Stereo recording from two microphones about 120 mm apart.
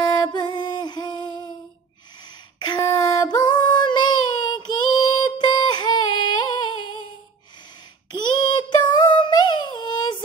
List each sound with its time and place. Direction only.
0.0 s music: 35° left (ahead or behind)
2.6 s child singing: 35° left (ahead or behind)
5.4 s music: 35° left (ahead or behind)
8.1 s a sound: 40° left (ahead or behind)